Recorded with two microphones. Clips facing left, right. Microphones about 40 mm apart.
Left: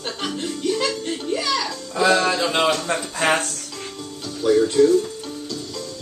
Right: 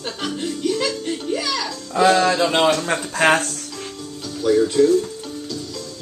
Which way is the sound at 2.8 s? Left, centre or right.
Right.